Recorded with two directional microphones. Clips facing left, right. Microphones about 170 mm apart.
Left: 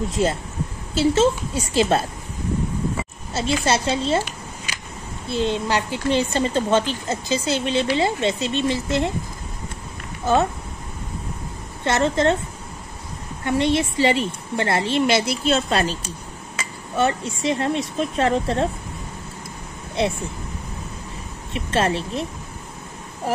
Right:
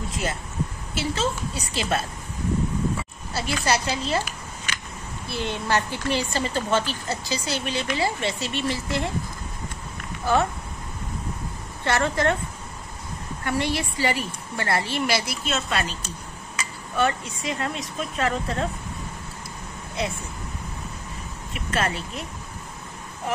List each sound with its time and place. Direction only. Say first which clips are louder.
0.1 s a woman's voice: left 8 dB; 25° left (ahead or behind)
3.3 s a woman's voice: left 4 dB; 25° left (ahead or behind)
5.3 s a woman's voice: left 4 dB; 20° left (ahead or behind)
10.3 s a woman's voice: left 3 dB; 20° left (ahead or behind)
11.8 s a woman's voice: left 4 dB; 20° left (ahead or behind)
13.4 s a woman's voice: left 6 dB; 25° left (ahead or behind)
21.5 s a woman's voice: left 5 dB; 30° left (ahead or behind)
23.3 s a sound: left 4 dB; 35° left (ahead or behind)